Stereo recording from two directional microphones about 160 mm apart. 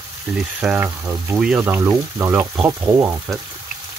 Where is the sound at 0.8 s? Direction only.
15° right (ahead or behind).